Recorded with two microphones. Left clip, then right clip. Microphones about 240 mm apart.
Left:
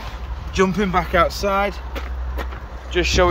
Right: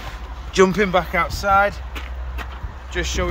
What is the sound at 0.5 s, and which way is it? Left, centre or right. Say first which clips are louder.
Speech: right 3 dB; centre.